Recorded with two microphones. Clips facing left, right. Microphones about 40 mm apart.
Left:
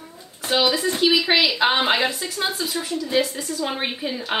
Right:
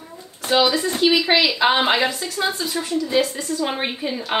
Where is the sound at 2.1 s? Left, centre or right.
Centre.